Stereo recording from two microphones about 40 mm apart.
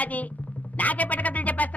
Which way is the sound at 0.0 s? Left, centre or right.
Left.